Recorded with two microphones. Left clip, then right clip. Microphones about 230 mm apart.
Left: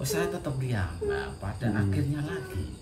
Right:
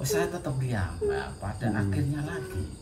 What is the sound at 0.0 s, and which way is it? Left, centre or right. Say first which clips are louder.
Speech: right 1 dB; centre.